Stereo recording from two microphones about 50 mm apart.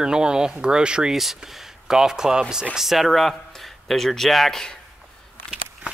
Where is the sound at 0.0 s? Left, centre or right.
Centre.